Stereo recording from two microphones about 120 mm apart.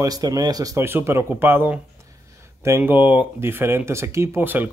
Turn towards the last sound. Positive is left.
turn(degrees=-15)  # may be behind; listen again after turning